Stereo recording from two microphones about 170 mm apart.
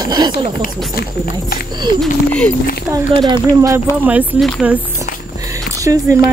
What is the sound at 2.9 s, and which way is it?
Speech, 25° right (ahead or behind).